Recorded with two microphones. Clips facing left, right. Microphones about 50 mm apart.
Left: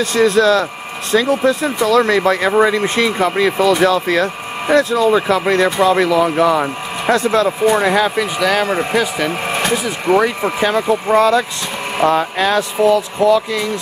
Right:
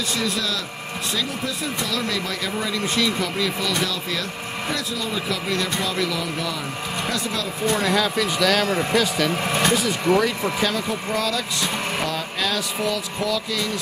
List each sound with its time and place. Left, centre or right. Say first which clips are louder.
0.0 s speech: left 13 dB; left
7.7 s speech: left 7 dB; left